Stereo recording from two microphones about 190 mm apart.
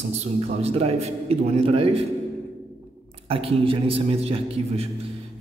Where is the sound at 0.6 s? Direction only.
30° right (ahead or behind).